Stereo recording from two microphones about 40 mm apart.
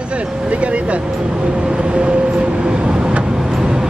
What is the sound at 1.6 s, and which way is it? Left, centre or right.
Vehicle, right.